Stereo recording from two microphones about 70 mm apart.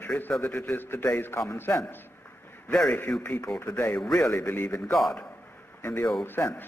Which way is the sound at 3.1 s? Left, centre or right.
Centre.